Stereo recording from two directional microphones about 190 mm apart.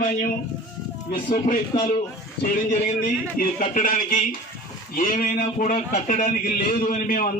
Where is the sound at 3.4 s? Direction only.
45° left (ahead or behind).